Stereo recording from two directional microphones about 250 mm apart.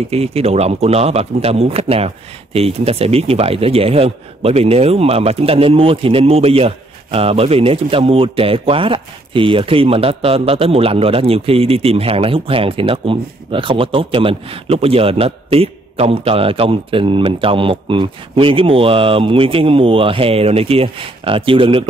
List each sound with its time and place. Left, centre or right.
0.1 s speech: right